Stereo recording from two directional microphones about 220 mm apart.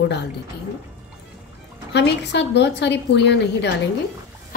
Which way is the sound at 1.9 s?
50° left (ahead or behind).